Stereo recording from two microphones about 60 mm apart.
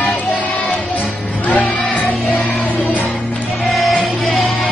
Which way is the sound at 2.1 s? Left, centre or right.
Centre.